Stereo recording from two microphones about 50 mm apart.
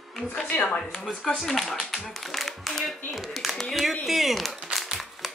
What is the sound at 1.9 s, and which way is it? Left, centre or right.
Clapping, centre.